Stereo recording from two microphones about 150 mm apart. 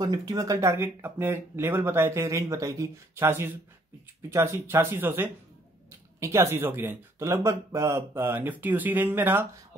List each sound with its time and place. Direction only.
0.0 s speech: 25° right (ahead or behind)